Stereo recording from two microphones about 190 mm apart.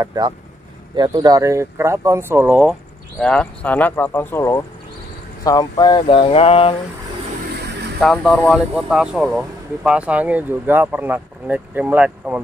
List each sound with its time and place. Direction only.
0.0 s speech: 20° right (ahead or behind)
3.2 s speech: 5° left (ahead or behind); by 6.8 s 30° left (ahead or behind)
8.0 s speech: 5° left (ahead or behind)